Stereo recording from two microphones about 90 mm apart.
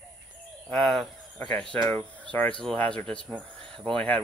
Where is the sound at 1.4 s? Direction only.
15° left (ahead or behind).